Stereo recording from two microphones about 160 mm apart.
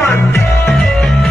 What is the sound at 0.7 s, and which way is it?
Music, centre (ahead or behind).